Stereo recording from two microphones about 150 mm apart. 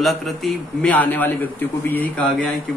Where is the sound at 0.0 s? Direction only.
Centre (ahead or behind).